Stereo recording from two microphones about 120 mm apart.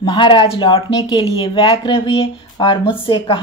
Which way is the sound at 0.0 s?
40° left (ahead or behind).